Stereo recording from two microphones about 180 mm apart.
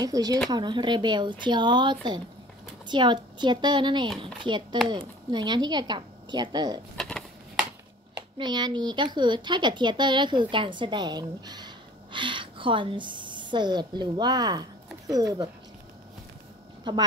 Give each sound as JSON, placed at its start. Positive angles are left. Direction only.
{"t": 0.0, "sound": "a woman's voice", "side_deg": -20}
{"t": 7.0, "sound": "a sound", "side_deg": 5}
{"t": 8.4, "sound": "speech", "side_deg": -25}
{"t": 16.9, "sound": "a woman's voice", "side_deg": -25}